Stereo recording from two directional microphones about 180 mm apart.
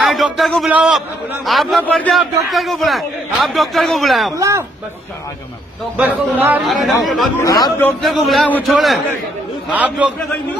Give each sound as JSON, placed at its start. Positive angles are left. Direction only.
{"t": 0.0, "sound": "a man's voice", "side_deg": 0}
{"t": 4.4, "sound": "a man's voice", "side_deg": -15}
{"t": 5.9, "sound": "a man's voice", "side_deg": -10}
{"t": 7.4, "sound": "speech", "side_deg": 20}
{"t": 7.8, "sound": "a man's voice", "side_deg": 0}